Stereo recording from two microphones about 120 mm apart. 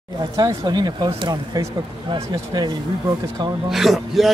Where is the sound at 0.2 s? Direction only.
35° right (ahead or behind).